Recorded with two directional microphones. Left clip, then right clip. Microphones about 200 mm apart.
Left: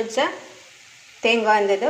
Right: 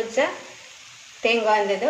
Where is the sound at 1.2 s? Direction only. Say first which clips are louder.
Left 2 dB; 30° left (ahead or behind).